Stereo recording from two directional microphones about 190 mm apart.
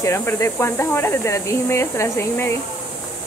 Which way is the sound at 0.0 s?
15° left (ahead or behind).